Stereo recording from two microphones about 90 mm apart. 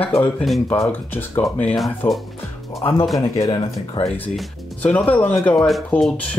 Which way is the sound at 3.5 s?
65° left (ahead or behind).